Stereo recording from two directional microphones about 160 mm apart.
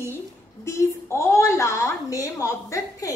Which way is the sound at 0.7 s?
15° left (ahead or behind).